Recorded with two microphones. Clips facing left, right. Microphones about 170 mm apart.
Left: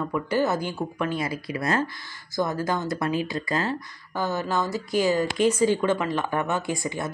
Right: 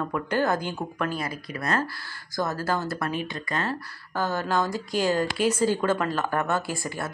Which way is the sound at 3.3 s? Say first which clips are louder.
Left 3 dB; 30° left (ahead or behind).